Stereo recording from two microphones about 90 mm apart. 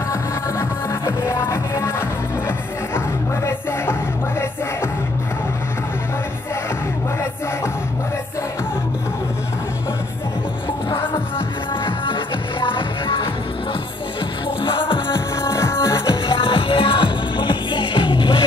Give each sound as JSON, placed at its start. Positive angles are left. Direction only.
{"t": 0.1, "sound": "music", "side_deg": 30}
{"t": 11.8, "sound": "music", "side_deg": 70}
{"t": 14.6, "sound": "music", "side_deg": 65}
{"t": 15.4, "sound": "music", "side_deg": 30}
{"t": 16.3, "sound": "music", "side_deg": 80}